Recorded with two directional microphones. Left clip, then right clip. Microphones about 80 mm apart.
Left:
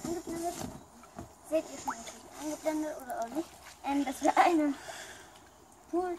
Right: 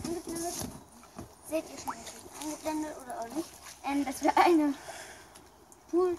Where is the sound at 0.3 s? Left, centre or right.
Right.